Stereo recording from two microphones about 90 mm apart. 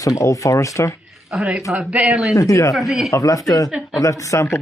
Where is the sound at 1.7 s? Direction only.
10° right (ahead or behind).